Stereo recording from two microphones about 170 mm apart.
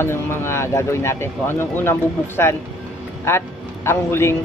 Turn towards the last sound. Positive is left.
turn(degrees=15)  # may be behind; listen again after turning